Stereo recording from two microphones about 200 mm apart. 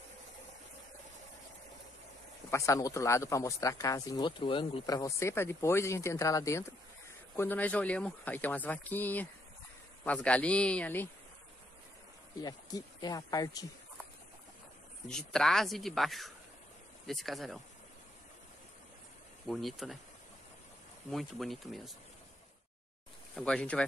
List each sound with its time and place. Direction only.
2.5 s speech: 15° left (ahead or behind)
12.4 s speech: 20° left (ahead or behind)
15.0 s speech: 5° left (ahead or behind)
19.4 s speech: centre (ahead or behind)
21.1 s speech: centre (ahead or behind)
23.3 s speech: 5° left (ahead or behind)